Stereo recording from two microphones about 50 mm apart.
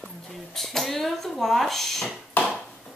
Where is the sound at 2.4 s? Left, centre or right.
Left.